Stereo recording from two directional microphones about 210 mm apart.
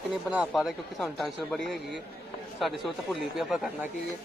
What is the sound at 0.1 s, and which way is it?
Speech, centre (ahead or behind).